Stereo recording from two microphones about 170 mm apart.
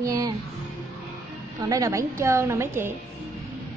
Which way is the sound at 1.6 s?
20° right (ahead or behind).